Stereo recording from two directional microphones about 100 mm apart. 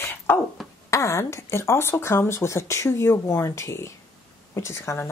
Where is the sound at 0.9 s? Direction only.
30° left (ahead or behind).